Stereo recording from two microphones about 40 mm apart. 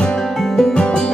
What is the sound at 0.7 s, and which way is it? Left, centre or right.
Music, left.